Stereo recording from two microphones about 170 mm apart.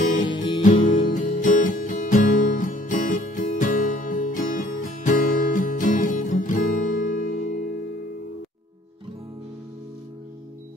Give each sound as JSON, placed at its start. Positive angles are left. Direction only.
{"t": 0.6, "sound": "music", "side_deg": 55}